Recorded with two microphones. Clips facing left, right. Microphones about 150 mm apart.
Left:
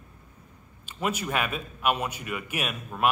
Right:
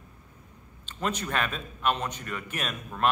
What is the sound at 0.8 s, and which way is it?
A man's voice, 10° left (ahead or behind).